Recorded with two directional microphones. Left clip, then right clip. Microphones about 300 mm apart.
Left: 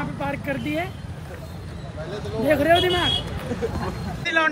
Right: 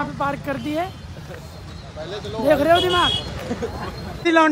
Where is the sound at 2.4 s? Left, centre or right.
Centre.